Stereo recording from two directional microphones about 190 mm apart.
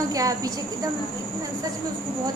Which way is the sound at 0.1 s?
20° right (ahead or behind).